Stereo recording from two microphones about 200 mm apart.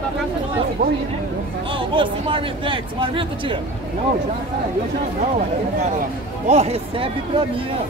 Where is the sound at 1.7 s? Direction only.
25° right (ahead or behind).